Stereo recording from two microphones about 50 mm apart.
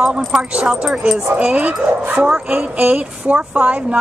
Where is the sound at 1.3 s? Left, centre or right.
Right.